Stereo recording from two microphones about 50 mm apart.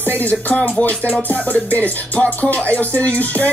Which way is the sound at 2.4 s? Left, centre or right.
Left.